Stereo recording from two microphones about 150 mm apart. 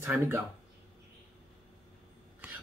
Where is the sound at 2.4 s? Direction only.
10° right (ahead or behind).